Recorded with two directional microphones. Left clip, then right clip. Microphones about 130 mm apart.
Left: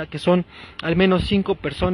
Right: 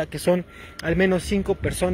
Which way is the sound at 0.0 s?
30° left (ahead or behind).